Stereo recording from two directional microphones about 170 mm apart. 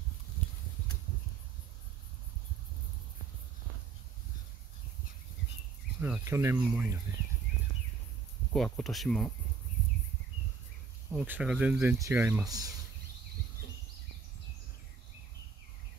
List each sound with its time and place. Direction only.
5.9 s speech: 10° right (ahead or behind)
8.5 s speech: 5° left (ahead or behind)
11.1 s speech: 10° right (ahead or behind)
12.4 s speech: 20° right (ahead or behind)